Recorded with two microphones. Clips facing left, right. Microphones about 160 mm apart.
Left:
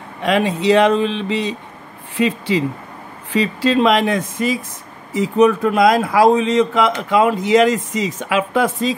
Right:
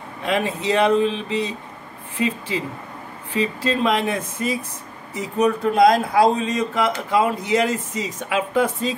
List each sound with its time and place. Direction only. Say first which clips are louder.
0.2 s a man's voice: left 6 dB; 90° left